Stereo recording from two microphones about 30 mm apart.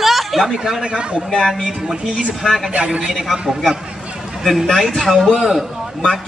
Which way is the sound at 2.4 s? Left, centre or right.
Centre.